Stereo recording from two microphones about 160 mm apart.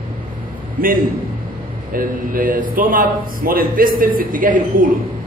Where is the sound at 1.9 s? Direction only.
60° right (ahead or behind).